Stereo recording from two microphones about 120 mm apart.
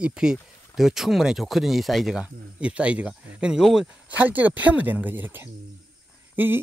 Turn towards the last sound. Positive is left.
turn(degrees=-15)  # may be behind; listen again after turning